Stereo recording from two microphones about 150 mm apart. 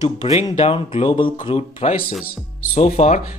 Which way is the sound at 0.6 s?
40° left (ahead or behind).